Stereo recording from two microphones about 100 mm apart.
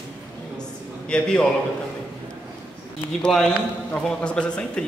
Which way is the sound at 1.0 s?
10° left (ahead or behind).